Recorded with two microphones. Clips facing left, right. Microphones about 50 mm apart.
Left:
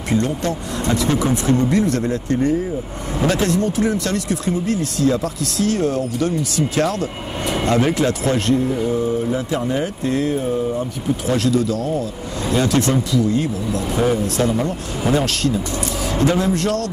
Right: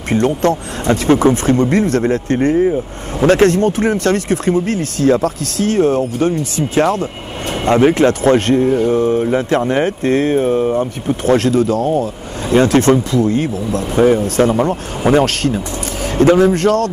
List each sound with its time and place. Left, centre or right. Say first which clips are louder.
0.1 s speech: right 6 dB; right